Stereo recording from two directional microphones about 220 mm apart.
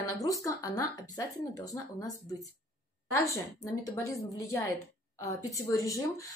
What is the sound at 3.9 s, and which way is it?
A woman's voice, 15° left (ahead or behind).